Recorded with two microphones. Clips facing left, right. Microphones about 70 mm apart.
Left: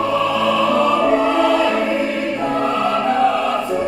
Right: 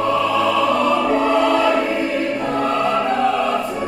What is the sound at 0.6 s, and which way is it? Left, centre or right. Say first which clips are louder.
Music: left 1 dB; centre.